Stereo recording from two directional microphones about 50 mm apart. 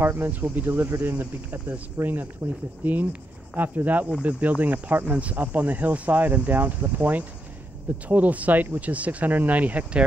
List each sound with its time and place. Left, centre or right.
0.0 s speech: right
4.0 s speech: right